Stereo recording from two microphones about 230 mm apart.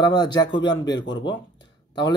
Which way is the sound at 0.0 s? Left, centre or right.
Centre.